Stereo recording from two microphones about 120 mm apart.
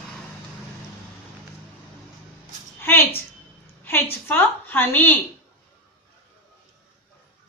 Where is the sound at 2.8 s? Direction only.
20° left (ahead or behind).